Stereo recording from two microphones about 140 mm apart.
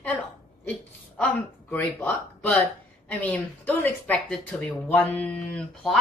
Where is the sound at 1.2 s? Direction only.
15° left (ahead or behind).